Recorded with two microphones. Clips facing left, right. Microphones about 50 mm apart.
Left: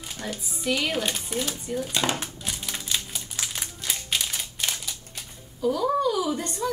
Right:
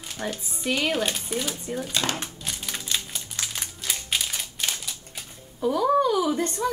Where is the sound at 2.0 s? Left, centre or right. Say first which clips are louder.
Left 1 dB; centre.